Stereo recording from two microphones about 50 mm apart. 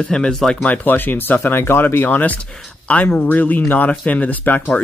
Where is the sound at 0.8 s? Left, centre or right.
Left.